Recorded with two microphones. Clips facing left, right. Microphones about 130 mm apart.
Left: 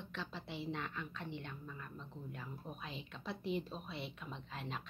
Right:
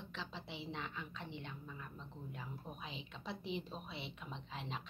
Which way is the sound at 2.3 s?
5° right (ahead or behind).